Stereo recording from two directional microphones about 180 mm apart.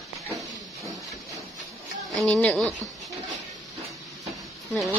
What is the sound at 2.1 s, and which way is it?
Speech, 5° left (ahead or behind).